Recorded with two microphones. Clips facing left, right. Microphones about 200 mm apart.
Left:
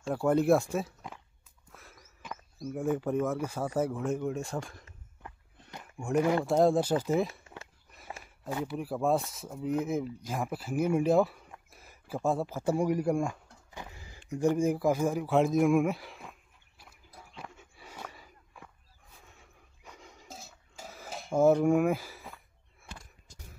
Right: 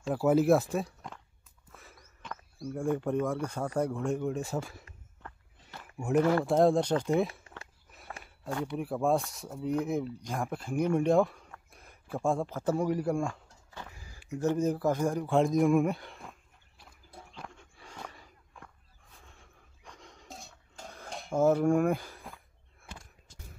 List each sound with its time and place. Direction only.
0.0 s speech: centre (ahead or behind)
1.7 s a sound: centre (ahead or behind)
2.7 s speech: 5° left (ahead or behind)
5.2 s walk: 15° left (ahead or behind)
5.9 s speech: 5° right (ahead or behind); by 13.4 s 15° left (ahead or behind)
13.7 s a sound: 20° left (ahead or behind)
14.3 s speech: 10° left (ahead or behind)
17.2 s dog: centre (ahead or behind)
19.1 s a sound: 5° left (ahead or behind)